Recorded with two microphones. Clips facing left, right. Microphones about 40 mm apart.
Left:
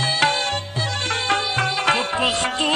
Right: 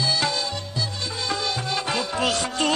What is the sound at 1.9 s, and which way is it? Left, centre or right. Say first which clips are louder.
Music: left 3 dB; left.